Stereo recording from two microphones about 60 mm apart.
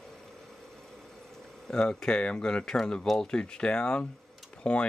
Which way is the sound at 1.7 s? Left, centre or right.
Centre.